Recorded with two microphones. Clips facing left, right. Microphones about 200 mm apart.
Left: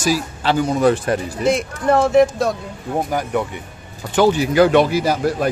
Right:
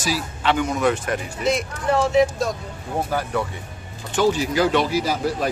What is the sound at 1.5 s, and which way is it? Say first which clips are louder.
Speech: left 4 dB; 55° left (ahead or behind).